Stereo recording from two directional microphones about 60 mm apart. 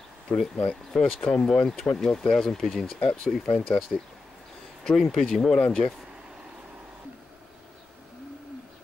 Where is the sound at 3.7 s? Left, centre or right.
Centre.